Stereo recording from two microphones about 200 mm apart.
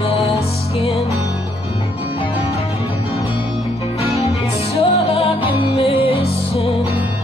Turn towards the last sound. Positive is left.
turn(degrees=30)  # may be behind; listen again after turning